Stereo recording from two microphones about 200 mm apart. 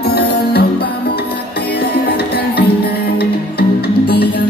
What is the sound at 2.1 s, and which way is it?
Music, 50° left (ahead or behind).